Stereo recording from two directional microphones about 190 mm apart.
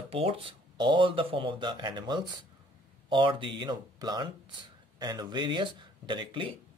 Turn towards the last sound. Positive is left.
turn(degrees=-25)  # may be behind; listen again after turning